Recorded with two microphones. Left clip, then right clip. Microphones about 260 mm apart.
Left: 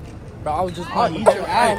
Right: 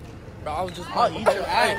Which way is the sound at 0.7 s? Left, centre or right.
Left.